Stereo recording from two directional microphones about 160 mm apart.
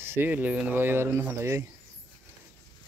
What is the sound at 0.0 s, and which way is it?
Speech, 15° right (ahead or behind).